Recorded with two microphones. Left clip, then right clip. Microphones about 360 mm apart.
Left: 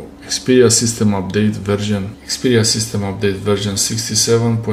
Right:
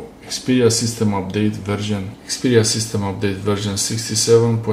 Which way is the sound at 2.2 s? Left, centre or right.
Centre.